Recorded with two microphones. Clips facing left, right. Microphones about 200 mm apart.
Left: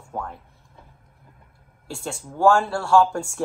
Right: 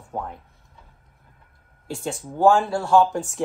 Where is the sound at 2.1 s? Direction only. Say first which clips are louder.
Right 1 dB; 20° right (ahead or behind).